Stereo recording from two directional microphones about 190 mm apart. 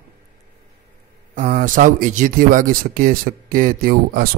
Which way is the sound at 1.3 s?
40° right (ahead or behind).